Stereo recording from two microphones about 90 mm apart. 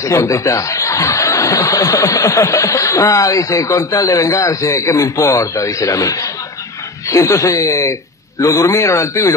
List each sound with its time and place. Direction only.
0.0 s speech: 35° left (ahead or behind)